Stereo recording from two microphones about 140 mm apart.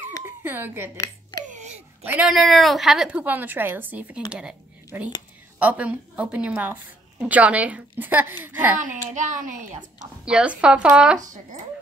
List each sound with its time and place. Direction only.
0.2 s speech: 15° right (ahead or behind)
0.9 s a sound: 25° left (ahead or behind)
1.5 s a sound: 55° right (ahead or behind)
2.0 s a woman's voice: 10° right (ahead or behind)
2.3 s a woman's voice: centre (ahead or behind)
8.7 s a child's voice: 65° right (ahead or behind)
10.2 s a woman's voice: 5° right (ahead or behind)